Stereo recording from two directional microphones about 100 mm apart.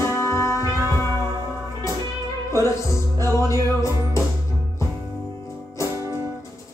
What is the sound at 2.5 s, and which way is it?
Music, 30° left (ahead or behind).